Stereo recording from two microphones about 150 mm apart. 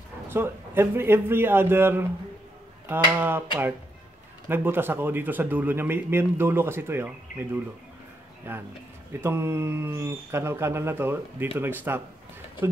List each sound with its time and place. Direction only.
0.3 s speech: 15° right (ahead or behind)
4.5 s speech: 15° right (ahead or behind)
8.5 s speech: 15° right (ahead or behind)